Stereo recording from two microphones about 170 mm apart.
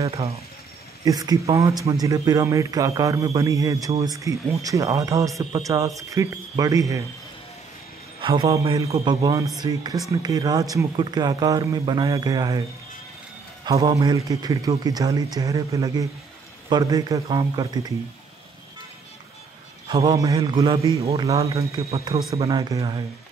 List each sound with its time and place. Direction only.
1.0 s speech: 20° right (ahead or behind)
8.2 s a man's voice: 30° right (ahead or behind)
13.7 s speech: 20° right (ahead or behind)
19.9 s speech: 20° right (ahead or behind)